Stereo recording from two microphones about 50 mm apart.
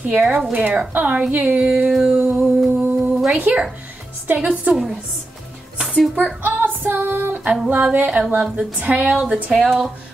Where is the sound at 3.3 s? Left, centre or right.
Right.